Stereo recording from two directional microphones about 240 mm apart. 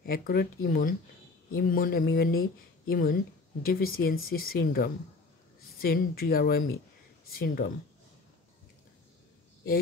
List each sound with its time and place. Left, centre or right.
0.0 s speech: left